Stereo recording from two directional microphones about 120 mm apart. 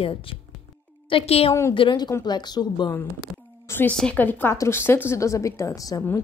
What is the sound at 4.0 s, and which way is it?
A woman's voice, 10° left (ahead or behind).